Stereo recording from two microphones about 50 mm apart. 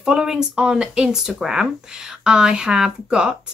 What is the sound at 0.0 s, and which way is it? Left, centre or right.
A woman's voice, centre.